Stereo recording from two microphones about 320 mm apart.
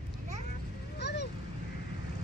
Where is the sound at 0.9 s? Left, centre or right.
Left.